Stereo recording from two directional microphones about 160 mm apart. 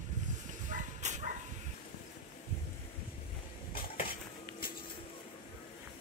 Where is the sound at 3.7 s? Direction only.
65° left (ahead or behind).